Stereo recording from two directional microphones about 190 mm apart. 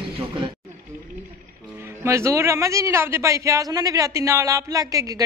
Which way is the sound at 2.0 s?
15° right (ahead or behind).